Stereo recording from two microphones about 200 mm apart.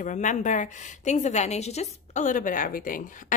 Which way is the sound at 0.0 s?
40° left (ahead or behind).